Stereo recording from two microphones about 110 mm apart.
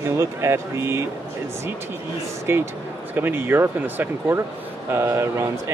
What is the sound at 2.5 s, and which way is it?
Speech, 20° right (ahead or behind).